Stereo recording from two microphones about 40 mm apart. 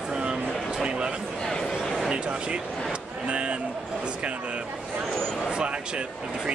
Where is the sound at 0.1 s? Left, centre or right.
Right.